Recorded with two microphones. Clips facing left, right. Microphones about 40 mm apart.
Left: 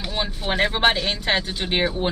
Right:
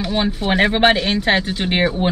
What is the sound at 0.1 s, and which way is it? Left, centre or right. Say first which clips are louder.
Speech: right 6 dB; centre.